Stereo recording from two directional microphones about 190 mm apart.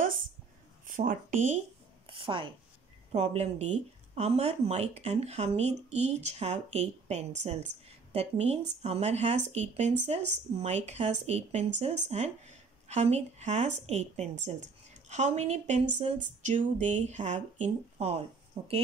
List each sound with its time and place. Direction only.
0.8 s speech: 45° right (ahead or behind)
2.0 s a woman's voice: 25° right (ahead or behind)